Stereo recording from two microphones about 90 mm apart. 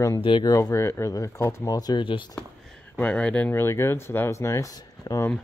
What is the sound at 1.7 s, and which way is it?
Speech, 45° left (ahead or behind).